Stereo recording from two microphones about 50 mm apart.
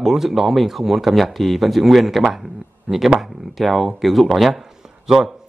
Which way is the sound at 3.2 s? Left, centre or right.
Centre.